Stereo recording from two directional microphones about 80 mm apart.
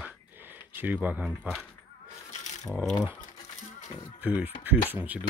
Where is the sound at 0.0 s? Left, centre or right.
Right.